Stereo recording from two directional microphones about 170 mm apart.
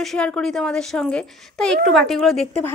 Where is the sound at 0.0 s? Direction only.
5° left (ahead or behind).